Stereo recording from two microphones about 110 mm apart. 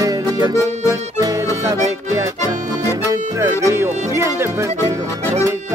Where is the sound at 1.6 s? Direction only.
30° right (ahead or behind).